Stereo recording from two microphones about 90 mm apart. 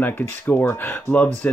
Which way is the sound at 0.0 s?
20° left (ahead or behind).